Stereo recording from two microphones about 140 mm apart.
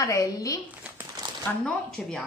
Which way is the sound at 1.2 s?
35° right (ahead or behind).